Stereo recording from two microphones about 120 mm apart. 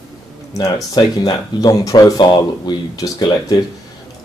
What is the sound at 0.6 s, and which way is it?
Speech, 35° left (ahead or behind).